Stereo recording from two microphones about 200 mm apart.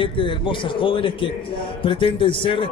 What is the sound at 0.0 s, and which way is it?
A man's voice, 25° left (ahead or behind).